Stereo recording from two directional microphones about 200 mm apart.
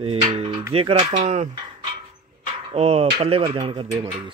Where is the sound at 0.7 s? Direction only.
30° right (ahead or behind).